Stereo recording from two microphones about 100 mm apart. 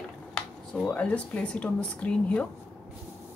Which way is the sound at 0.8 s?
15° left (ahead or behind).